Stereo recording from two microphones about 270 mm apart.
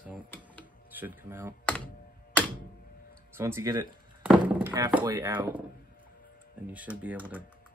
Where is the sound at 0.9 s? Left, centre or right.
Centre.